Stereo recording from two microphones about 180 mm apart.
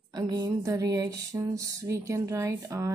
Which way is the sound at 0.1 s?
20° right (ahead or behind).